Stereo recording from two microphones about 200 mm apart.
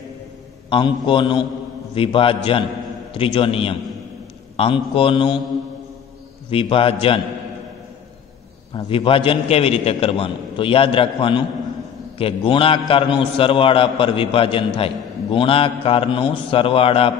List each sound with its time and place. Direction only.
0.7 s a man's voice: 25° left (ahead or behind)
6.5 s a man's voice: 25° left (ahead or behind)
8.7 s a man's voice: 25° left (ahead or behind)